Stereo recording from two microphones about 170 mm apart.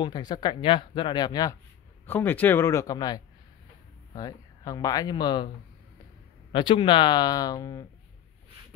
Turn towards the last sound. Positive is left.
turn(degrees=20)  # may be behind; listen again after turning